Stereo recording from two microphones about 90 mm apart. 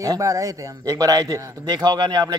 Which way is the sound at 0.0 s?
40° right (ahead or behind).